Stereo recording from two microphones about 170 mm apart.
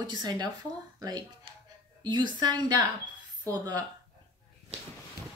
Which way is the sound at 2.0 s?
25° right (ahead or behind).